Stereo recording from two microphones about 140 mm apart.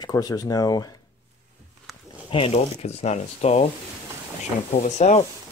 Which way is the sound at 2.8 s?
50° left (ahead or behind).